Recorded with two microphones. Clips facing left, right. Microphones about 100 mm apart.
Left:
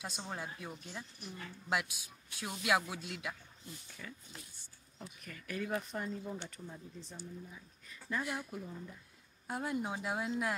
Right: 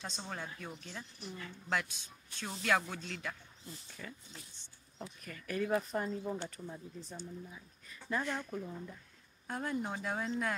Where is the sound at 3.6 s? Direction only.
35° right (ahead or behind).